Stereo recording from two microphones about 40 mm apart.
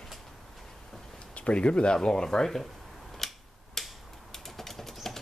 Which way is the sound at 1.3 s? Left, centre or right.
Left.